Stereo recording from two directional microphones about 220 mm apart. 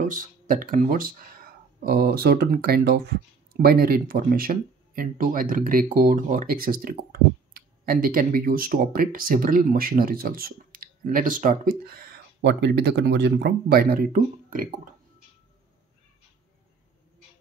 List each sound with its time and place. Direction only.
0.0 s speech: 35° right (ahead or behind)